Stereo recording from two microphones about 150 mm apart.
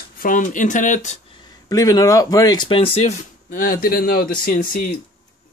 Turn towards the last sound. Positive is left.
turn(degrees=70)  # may be behind; listen again after turning